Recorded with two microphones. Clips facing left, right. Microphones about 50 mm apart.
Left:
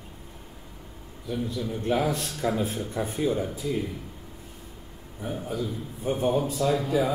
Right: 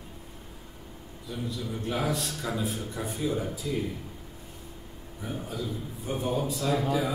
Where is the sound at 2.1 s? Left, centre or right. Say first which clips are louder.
Left 3 dB; left.